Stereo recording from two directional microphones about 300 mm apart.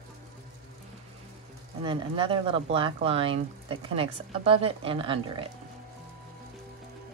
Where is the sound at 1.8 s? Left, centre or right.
Centre.